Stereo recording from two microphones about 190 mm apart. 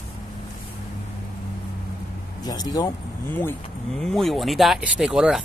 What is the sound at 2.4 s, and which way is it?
Speech, 20° left (ahead or behind).